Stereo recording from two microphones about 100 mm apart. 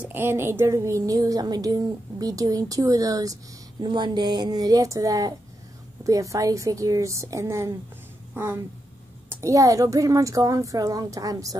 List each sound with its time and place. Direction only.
0.0 s speech: 20° right (ahead or behind); by 3.3 s 35° right (ahead or behind)
3.8 s speech: 50° right (ahead or behind); by 7.7 s 30° right (ahead or behind)
9.3 s speech: 30° right (ahead or behind)